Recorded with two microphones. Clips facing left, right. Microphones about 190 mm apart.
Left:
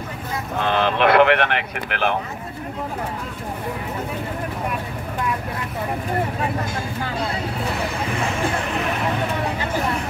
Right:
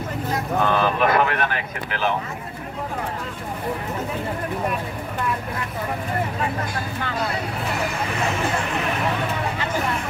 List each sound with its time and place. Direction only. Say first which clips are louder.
0.6 s speech: left 1 dB; 75° left (ahead or behind)